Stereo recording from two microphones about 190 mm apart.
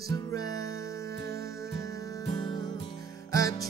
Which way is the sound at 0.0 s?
20° left (ahead or behind).